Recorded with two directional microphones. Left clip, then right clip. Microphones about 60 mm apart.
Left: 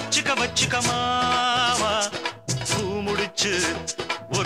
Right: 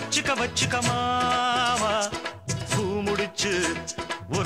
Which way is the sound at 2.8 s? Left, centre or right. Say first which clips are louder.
Right 3 dB; left.